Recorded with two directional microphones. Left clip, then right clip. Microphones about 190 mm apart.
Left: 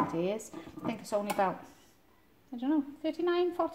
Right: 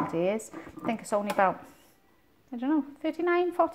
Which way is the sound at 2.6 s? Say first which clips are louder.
Right 3 dB; 25° right (ahead or behind).